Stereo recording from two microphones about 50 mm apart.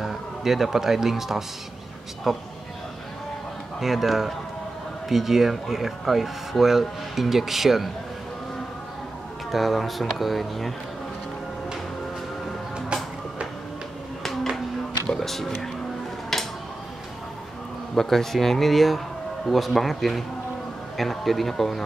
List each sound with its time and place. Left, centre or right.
0.0 s speech: centre
3.8 s speech: centre
9.5 s speech: centre
12.7 s music: centre
14.2 s a sound: centre
15.0 s speech: centre
17.9 s speech: centre